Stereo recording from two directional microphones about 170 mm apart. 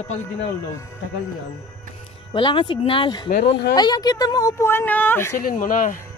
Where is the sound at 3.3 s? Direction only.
75° left (ahead or behind).